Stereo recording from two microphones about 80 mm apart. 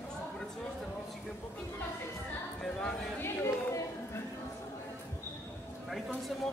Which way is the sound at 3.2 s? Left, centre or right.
Left.